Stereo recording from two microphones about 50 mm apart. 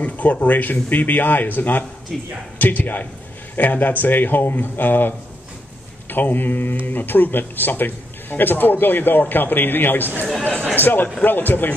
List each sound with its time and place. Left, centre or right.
0.0 s a man's voice: left